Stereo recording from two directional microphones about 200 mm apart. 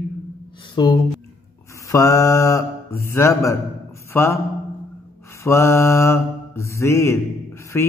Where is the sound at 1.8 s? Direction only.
15° left (ahead or behind).